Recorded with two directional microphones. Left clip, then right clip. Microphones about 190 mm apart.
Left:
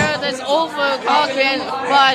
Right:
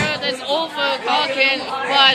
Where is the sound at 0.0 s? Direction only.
5° left (ahead or behind).